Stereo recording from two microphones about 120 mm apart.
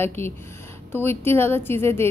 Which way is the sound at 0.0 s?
20° left (ahead or behind).